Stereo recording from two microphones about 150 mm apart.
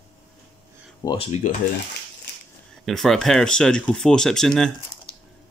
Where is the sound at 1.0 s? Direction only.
20° left (ahead or behind).